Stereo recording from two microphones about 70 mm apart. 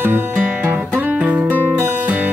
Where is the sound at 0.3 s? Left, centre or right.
Right.